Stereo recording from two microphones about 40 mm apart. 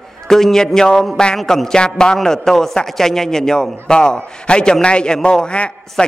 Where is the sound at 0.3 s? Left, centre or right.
Centre.